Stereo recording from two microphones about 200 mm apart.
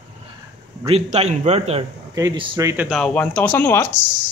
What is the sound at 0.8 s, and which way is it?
Speech, 30° right (ahead or behind).